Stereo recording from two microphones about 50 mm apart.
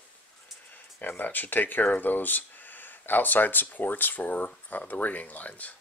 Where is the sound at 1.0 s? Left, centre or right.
Left.